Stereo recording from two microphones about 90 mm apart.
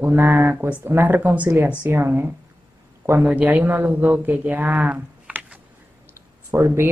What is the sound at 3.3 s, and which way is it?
Speech, 20° right (ahead or behind).